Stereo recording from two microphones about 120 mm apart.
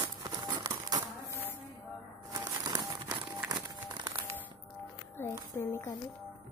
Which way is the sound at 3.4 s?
40° right (ahead or behind).